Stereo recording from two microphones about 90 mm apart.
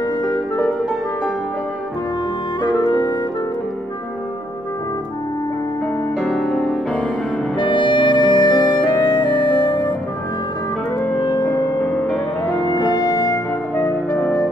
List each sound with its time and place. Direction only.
2.6 s music: 50° left (ahead or behind)
6.2 s music: centre (ahead or behind)
7.5 s music: 65° left (ahead or behind)
11.0 s clarinet: 55° left (ahead or behind)
11.4 s music: 15° left (ahead or behind)
12.6 s music: 50° left (ahead or behind)
13.7 s music: 10° left (ahead or behind)